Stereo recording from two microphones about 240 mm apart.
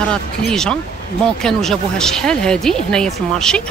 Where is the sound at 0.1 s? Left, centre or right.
Centre.